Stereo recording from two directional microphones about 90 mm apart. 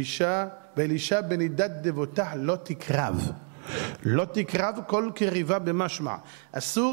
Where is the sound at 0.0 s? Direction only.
15° right (ahead or behind).